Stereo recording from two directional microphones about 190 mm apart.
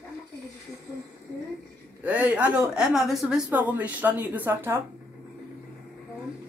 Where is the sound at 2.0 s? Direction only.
5° right (ahead or behind).